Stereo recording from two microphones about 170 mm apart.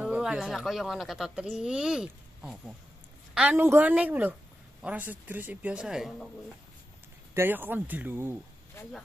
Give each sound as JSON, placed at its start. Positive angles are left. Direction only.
{"t": 0.0, "sound": "speech", "side_deg": -5}
{"t": 7.3, "sound": "speech", "side_deg": -10}
{"t": 8.8, "sound": "speech", "side_deg": 15}